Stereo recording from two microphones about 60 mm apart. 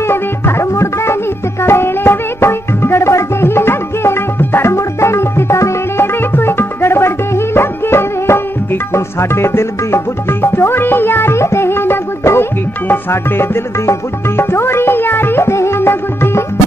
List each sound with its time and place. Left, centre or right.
0.0 s music: left
6.3 s music: left